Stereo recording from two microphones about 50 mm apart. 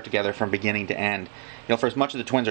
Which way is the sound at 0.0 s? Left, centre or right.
Centre.